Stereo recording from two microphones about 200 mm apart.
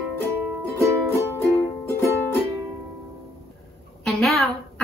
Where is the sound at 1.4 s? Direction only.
15° left (ahead or behind).